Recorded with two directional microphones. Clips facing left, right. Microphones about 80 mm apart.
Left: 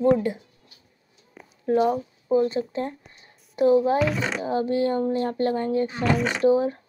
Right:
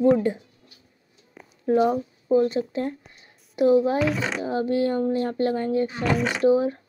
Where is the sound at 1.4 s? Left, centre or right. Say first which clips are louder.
Even; centre.